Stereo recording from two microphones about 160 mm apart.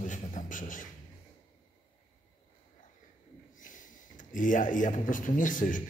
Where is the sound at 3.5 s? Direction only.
55° left (ahead or behind).